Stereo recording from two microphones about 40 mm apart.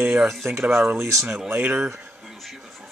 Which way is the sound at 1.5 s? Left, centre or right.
Right.